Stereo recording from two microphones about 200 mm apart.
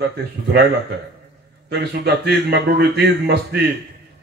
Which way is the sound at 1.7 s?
55° right (ahead or behind).